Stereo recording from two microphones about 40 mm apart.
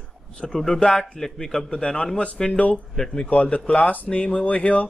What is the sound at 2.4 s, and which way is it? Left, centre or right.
Speech, centre.